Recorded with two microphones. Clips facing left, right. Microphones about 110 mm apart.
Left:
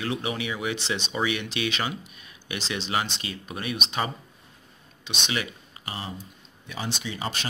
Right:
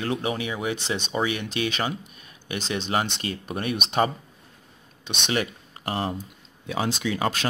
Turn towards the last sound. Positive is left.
turn(degrees=-70)  # may be behind; listen again after turning